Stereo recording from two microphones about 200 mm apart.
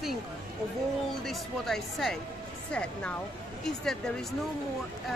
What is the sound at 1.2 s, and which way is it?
Speech, centre (ahead or behind).